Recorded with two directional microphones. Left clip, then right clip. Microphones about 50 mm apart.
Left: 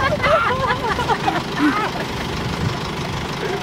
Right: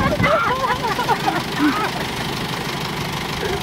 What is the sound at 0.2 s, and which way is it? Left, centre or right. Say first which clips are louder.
Vehicle: even; left.